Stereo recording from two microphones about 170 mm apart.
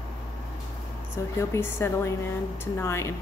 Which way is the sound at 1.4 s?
15° left (ahead or behind).